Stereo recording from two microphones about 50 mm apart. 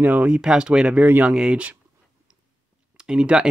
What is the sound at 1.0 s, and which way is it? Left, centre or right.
Speech, right.